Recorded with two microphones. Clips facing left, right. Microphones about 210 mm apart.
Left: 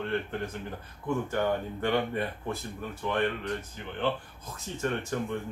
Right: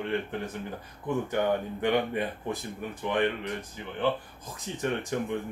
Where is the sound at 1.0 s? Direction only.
15° right (ahead or behind).